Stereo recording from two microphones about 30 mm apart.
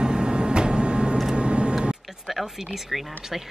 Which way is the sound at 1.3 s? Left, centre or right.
Right.